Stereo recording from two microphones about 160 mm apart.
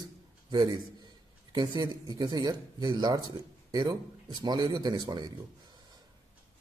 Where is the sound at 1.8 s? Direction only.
25° right (ahead or behind).